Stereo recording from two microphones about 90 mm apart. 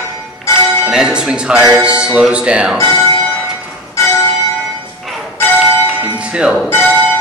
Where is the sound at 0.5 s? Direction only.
35° left (ahead or behind).